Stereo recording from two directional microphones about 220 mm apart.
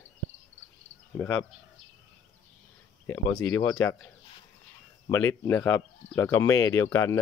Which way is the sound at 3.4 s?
15° left (ahead or behind).